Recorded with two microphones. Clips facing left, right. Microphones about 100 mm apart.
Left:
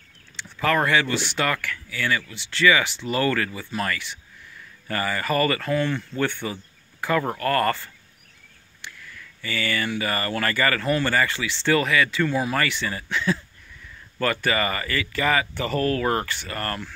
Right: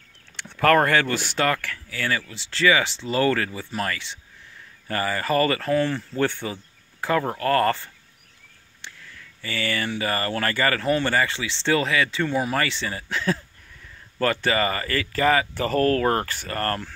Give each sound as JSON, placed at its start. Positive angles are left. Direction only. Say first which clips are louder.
{"t": 0.4, "sound": "speech", "louder": "right 4 dB", "side_deg": -55}
{"t": 9.4, "sound": "speech", "louder": "even", "side_deg": -30}